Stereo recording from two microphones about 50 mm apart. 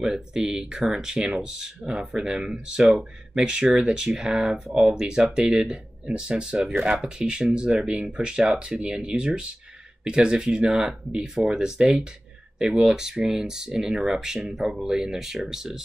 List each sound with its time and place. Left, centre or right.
0.0 s speech: centre